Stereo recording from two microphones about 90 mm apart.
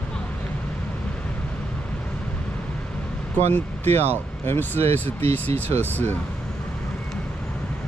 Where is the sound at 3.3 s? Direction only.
20° left (ahead or behind).